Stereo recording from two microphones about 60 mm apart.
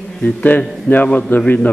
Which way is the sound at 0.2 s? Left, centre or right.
Left.